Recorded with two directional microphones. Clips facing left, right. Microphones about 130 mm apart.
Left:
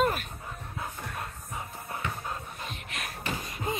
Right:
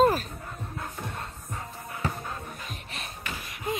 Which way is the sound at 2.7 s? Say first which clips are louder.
Left 1 dB; 30° right (ahead or behind).